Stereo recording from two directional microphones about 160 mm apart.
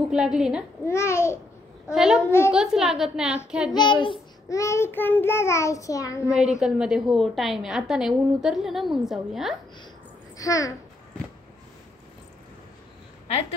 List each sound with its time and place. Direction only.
0.1 s a woman's voice: 5° right (ahead or behind)
0.8 s child singing: 15° left (ahead or behind)
1.9 s a woman's voice: 5° right (ahead or behind)
2.2 s child singing: 15° left (ahead or behind)
2.5 s a woman's voice: 5° right (ahead or behind)
3.7 s child singing: 30° left (ahead or behind)
4.5 s child singing: 20° left (ahead or behind)
6.3 s a woman's voice: 5° right (ahead or behind)
10.3 s a child's voice: 20° left (ahead or behind)